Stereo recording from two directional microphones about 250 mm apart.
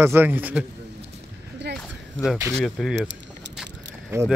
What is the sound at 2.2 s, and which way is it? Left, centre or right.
Speech, centre.